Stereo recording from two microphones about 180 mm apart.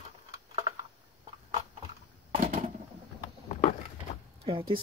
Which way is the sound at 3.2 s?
35° left (ahead or behind).